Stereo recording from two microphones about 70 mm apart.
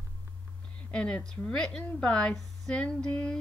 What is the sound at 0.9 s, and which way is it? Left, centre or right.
A woman's voice, centre.